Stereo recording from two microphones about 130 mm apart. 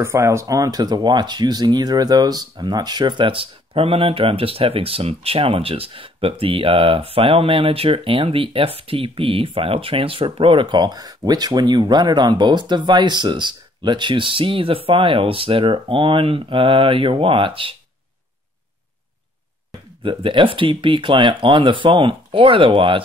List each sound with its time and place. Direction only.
0.0 s speech: 20° right (ahead or behind); by 17.7 s 40° right (ahead or behind)
20.0 s speech: 40° right (ahead or behind)